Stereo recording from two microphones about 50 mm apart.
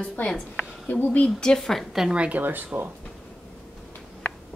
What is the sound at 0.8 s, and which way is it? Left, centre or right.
Speech, left.